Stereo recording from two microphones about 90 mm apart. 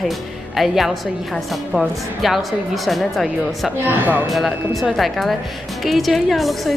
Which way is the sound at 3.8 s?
20° right (ahead or behind).